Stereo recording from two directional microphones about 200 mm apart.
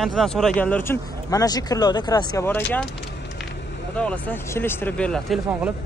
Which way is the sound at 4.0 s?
5° left (ahead or behind).